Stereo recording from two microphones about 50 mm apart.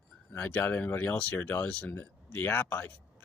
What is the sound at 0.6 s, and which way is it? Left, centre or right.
Speech, left.